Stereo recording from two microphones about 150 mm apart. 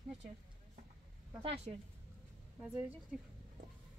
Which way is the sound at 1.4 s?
40° right (ahead or behind).